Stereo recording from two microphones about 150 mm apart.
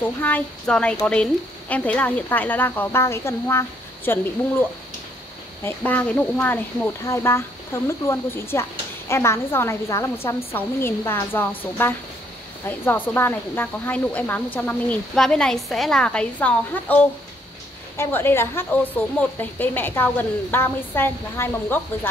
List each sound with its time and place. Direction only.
0.2 s a woman's voice: 10° left (ahead or behind)